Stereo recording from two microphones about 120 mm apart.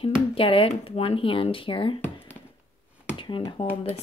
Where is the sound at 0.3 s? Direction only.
50° left (ahead or behind).